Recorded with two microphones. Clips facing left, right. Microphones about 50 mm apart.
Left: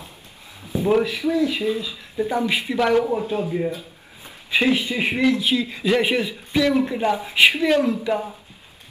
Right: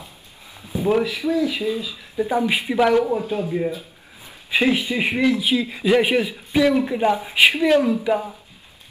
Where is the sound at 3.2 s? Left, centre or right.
Left.